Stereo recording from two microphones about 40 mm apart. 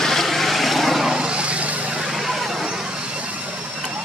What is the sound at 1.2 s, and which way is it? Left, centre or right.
Vehicle, right.